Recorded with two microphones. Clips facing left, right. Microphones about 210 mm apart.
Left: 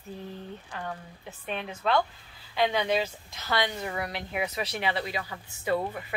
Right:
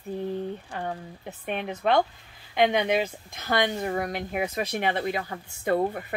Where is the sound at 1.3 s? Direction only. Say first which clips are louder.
Right 4 dB; 60° right (ahead or behind).